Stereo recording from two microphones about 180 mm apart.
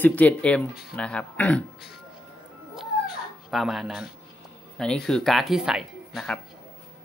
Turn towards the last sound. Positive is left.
turn(degrees=0)  # may be behind; listen again after turning